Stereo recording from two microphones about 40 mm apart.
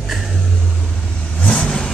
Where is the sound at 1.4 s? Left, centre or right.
Left.